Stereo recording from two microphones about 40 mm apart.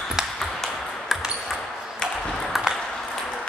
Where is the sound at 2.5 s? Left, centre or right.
Centre.